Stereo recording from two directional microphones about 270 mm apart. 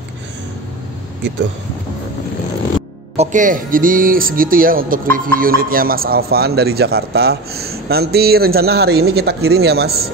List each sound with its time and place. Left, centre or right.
3.2 s speech: right